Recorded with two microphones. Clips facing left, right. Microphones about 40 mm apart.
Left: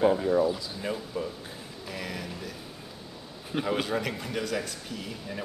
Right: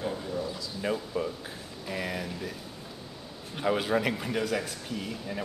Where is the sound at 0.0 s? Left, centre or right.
Left.